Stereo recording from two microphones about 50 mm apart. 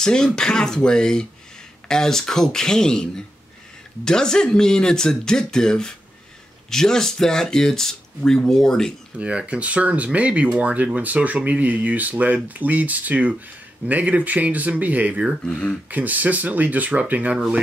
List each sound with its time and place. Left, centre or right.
0.0 s speech: centre
9.1 s speech: right